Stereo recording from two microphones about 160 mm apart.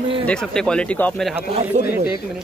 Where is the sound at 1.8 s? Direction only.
45° right (ahead or behind).